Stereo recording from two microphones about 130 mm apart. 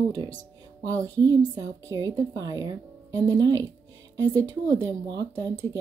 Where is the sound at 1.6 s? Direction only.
25° right (ahead or behind).